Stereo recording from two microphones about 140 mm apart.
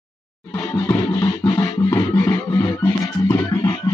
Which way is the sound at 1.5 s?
20° left (ahead or behind).